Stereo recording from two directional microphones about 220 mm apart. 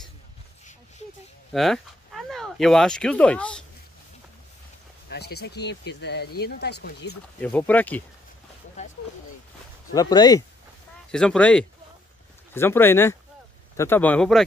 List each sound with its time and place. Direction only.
1.5 s speech: centre (ahead or behind)
5.1 s speech: 50° left (ahead or behind)
7.4 s speech: 5° left (ahead or behind)
9.9 s speech: 20° left (ahead or behind)
11.1 s speech: 5° left (ahead or behind)